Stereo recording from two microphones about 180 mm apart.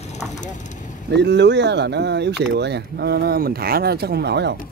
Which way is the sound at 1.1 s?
75° right (ahead or behind).